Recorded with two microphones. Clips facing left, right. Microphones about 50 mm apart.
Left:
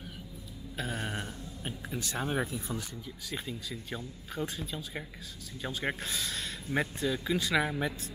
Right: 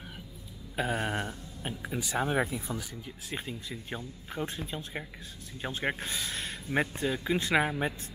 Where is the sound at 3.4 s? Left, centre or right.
Right.